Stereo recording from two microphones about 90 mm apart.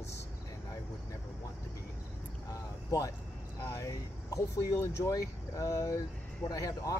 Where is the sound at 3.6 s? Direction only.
30° left (ahead or behind).